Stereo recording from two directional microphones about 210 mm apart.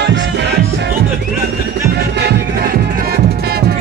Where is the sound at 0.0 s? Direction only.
55° right (ahead or behind).